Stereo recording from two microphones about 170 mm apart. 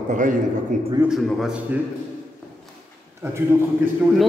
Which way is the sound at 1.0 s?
Centre (ahead or behind).